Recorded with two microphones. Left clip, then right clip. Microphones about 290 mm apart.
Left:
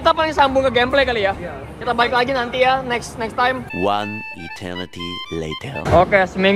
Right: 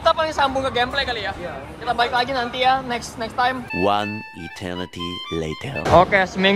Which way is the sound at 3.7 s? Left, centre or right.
Centre.